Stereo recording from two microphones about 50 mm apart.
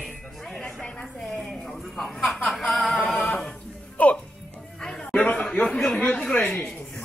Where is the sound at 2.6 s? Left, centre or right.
Centre.